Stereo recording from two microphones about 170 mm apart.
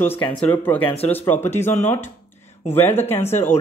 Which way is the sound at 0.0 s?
10° left (ahead or behind).